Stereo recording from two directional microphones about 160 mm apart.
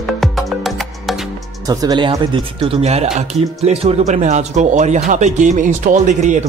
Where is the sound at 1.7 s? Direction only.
25° right (ahead or behind).